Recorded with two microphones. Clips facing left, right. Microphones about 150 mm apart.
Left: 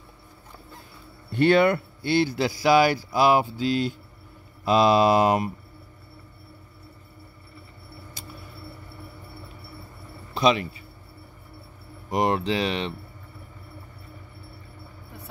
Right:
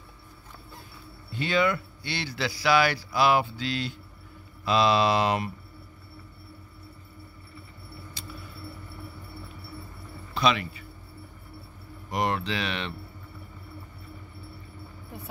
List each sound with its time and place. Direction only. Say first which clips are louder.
1.3 s speech: left 7 dB; 60° left (ahead or behind); by 5.5 s 45° left (ahead or behind)
10.3 s speech: left 4 dB; 40° left (ahead or behind)
12.2 s speech: left 5 dB; 30° left (ahead or behind)